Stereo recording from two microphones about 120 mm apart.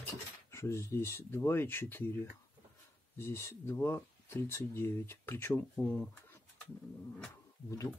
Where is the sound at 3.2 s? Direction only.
20° left (ahead or behind).